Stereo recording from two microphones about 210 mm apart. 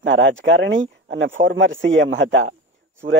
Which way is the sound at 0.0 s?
65° right (ahead or behind).